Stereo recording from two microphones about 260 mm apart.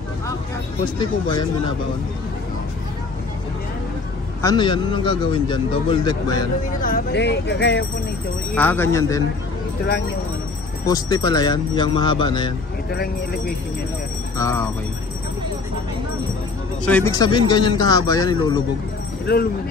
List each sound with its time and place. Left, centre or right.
0.8 s a man's voice: centre
4.4 s a man's voice: centre
6.8 s speech: left
8.5 s a man's voice: centre
10.9 s a man's voice: centre
12.9 s speech: left
14.3 s speech: centre
16.8 s a man's voice: centre